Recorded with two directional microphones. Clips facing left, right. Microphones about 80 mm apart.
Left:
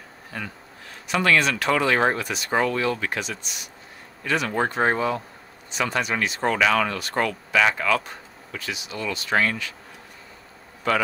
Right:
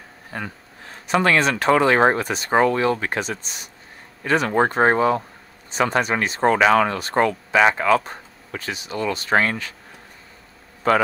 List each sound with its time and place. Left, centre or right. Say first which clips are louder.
0.3 s speech: right 3 dB; right
10.8 s speech: right 5 dB; right